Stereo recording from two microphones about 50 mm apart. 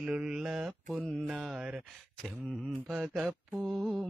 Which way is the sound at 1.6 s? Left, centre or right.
Right.